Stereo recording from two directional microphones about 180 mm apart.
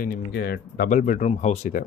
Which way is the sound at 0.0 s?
60° left (ahead or behind).